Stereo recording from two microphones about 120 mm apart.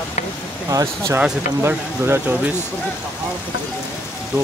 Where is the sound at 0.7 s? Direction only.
25° right (ahead or behind).